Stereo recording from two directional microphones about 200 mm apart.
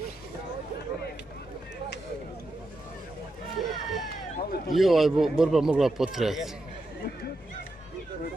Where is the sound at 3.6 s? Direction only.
Centre (ahead or behind).